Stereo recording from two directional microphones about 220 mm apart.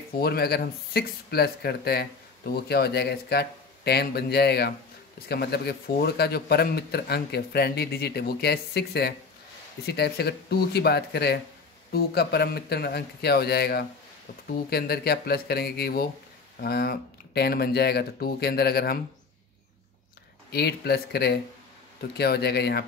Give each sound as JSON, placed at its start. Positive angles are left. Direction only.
{"t": 0.2, "sound": "speech", "side_deg": 45}
{"t": 20.5, "sound": "speech", "side_deg": 45}